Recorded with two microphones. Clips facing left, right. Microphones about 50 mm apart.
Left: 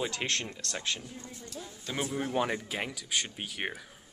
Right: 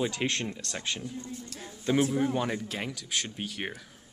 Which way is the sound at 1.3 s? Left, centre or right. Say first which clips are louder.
Right 2 dB; right.